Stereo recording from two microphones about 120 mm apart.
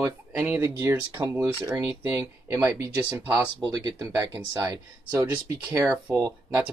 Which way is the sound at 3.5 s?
35° right (ahead or behind).